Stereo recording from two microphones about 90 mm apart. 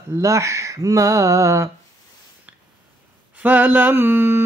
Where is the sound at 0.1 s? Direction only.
35° right (ahead or behind).